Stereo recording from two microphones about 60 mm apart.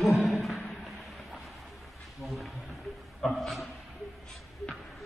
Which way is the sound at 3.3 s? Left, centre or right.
Centre.